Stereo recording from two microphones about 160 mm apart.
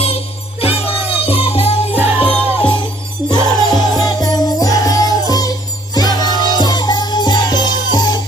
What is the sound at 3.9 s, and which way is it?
Music, 25° left (ahead or behind).